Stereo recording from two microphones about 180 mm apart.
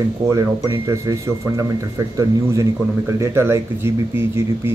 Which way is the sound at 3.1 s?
15° right (ahead or behind).